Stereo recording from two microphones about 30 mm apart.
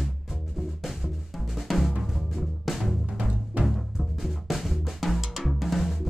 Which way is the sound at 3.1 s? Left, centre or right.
Right.